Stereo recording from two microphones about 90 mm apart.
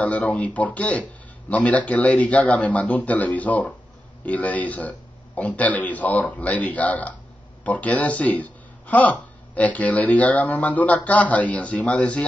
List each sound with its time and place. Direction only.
0.0 s speech: 15° left (ahead or behind)